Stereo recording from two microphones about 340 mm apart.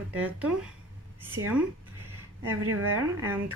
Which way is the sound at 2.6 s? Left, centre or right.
Right.